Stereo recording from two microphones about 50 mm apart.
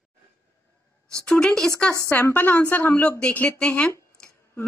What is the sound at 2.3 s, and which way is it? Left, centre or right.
A woman's voice, left.